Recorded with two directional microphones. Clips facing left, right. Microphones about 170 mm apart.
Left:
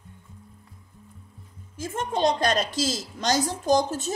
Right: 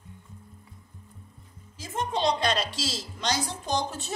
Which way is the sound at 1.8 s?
50° left (ahead or behind).